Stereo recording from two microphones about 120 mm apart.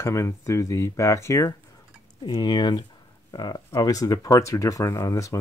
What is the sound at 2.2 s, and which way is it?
Speech, 35° left (ahead or behind).